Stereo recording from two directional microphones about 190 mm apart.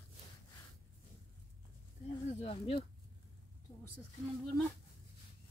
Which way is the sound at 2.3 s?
30° left (ahead or behind).